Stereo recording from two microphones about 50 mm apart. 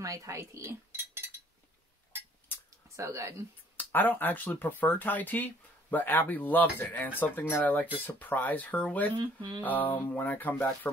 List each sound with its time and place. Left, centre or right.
0.0 s cutlery: right
3.0 s speech: right
3.7 s speech: left